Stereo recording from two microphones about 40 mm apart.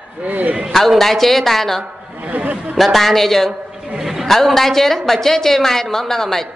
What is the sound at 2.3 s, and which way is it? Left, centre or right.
Speech, right.